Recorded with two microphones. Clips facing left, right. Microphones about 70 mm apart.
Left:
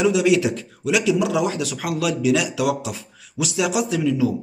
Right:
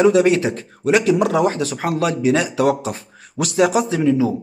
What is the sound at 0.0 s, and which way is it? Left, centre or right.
Speech, right.